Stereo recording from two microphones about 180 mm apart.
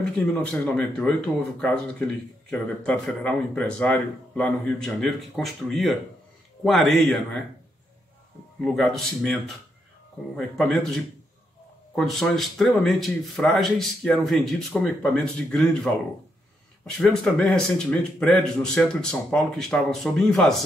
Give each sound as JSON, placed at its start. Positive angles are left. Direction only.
{"t": 0.3, "sound": "speech", "side_deg": 5}
{"t": 2.5, "sound": "speech", "side_deg": 5}
{"t": 8.5, "sound": "speech", "side_deg": 0}